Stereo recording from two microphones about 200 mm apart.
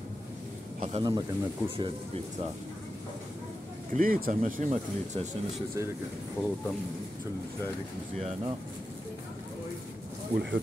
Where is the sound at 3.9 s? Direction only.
45° right (ahead or behind).